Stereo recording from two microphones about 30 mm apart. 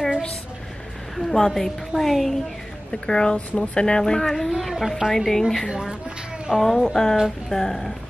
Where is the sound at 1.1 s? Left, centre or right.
Centre.